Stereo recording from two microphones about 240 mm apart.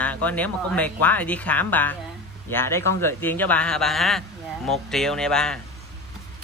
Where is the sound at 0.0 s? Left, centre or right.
Centre.